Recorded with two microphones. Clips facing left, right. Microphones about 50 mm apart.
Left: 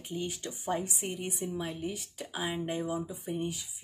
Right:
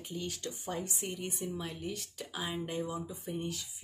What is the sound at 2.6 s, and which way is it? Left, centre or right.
Speech, left.